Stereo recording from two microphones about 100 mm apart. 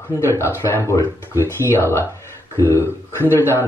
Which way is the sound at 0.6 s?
25° left (ahead or behind).